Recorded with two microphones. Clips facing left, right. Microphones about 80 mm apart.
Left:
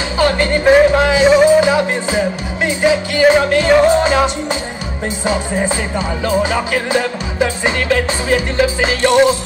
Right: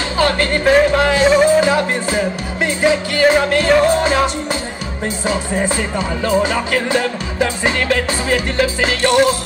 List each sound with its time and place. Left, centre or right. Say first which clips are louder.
0.2 s music: left 2 dB; centre